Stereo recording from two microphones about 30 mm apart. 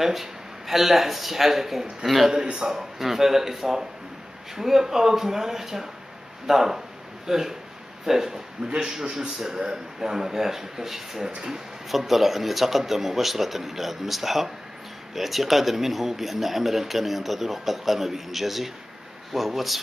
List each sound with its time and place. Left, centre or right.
0.0 s speech: centre
2.5 s a man's voice: right
3.0 s a man's voice: centre
11.3 s a man's voice: right
12.1 s speech: centre